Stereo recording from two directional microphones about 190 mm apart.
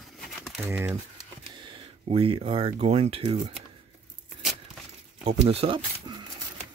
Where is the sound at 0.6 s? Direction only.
10° right (ahead or behind).